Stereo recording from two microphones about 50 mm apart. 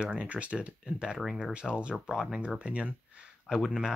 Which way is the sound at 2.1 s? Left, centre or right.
Centre.